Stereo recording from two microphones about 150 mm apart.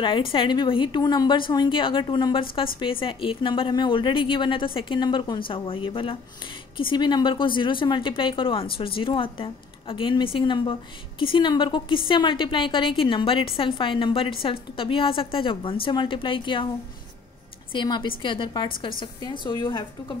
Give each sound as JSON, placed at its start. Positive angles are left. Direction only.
{"t": 0.0, "sound": "a woman's voice", "side_deg": 35}
{"t": 17.7, "sound": "a woman's voice", "side_deg": 30}